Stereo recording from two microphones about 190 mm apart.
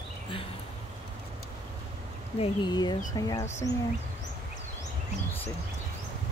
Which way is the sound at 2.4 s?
25° left (ahead or behind).